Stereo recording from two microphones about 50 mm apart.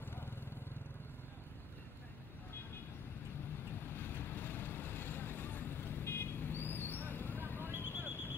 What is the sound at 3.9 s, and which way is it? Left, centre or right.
Vehicle, left.